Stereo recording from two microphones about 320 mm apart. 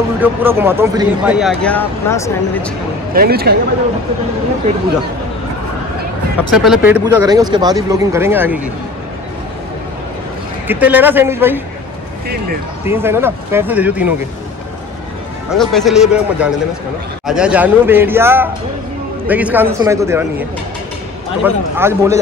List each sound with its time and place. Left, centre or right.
0.2 s speech: centre
3.1 s speech: right
6.5 s speech: centre
10.7 s speech: centre
12.8 s speech: centre
15.5 s speech: centre